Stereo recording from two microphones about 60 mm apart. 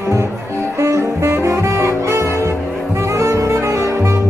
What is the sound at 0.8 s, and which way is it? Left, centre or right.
Saxophone, right.